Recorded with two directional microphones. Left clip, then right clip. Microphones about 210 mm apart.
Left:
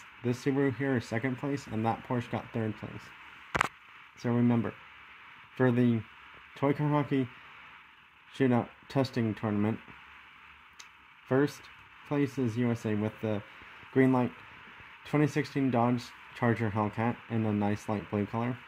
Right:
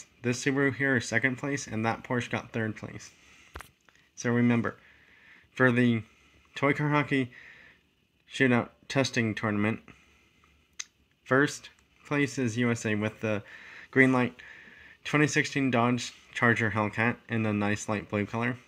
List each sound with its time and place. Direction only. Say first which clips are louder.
0.2 s speech: right 3 dB; centre (ahead or behind)
4.2 s speech: right 3 dB; centre (ahead or behind)
8.4 s speech: right 3 dB; centre (ahead or behind)
11.2 s speech: right 4 dB; centre (ahead or behind)